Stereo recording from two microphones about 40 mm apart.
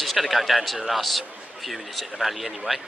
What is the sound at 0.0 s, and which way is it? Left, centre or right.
Speech, centre.